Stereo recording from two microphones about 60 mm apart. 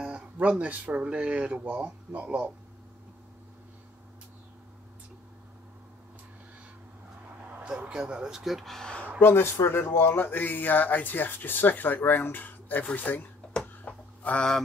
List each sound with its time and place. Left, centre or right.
0.0 s speech: centre
7.6 s speech: centre
8.7 s speech: centre
9.2 s speech: left
13.5 s a sound: centre